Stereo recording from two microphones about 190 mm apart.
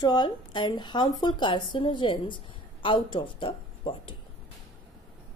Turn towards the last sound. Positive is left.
turn(degrees=25)  # may be behind; listen again after turning